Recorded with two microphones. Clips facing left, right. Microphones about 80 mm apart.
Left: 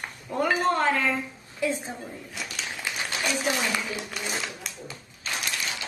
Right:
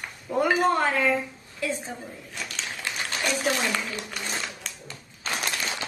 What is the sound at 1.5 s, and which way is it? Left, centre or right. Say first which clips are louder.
Speech: left 2 dB; centre.